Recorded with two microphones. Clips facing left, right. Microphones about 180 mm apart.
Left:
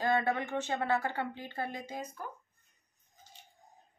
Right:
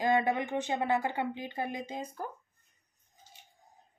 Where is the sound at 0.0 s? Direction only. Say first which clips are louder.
Right 2 dB; 15° right (ahead or behind).